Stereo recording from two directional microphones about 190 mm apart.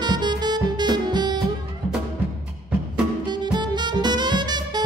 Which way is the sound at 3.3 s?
25° right (ahead or behind).